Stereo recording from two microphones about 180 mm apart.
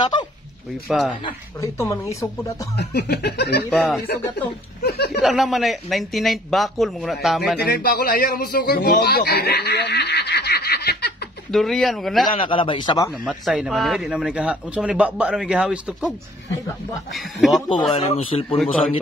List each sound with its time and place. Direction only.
0.0 s a sound: 25° left (ahead or behind)
0.8 s speech: centre (ahead or behind)
1.2 s speech: 15° left (ahead or behind)
2.8 s a sound: 65° left (ahead or behind)
4.8 s a sound: 60° left (ahead or behind)
5.2 s speech: centre (ahead or behind)
7.6 s speech: 60° left (ahead or behind)
11.5 s speech: centre (ahead or behind)
12.4 s a man's voice: 30° left (ahead or behind)
13.2 s speech: 5° right (ahead or behind)
17.1 s speech: centre (ahead or behind)
17.6 s a man's voice: 25° left (ahead or behind)